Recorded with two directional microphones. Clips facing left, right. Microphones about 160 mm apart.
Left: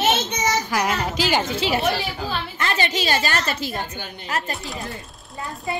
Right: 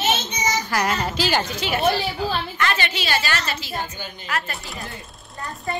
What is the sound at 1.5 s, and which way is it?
A woman's voice, 30° left (ahead or behind).